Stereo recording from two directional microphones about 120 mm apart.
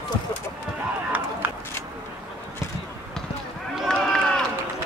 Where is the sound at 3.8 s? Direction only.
Centre (ahead or behind).